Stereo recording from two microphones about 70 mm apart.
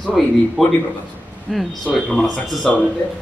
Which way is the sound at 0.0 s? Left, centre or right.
Centre.